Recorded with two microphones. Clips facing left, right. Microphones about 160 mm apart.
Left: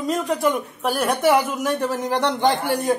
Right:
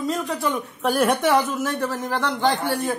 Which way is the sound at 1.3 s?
15° left (ahead or behind).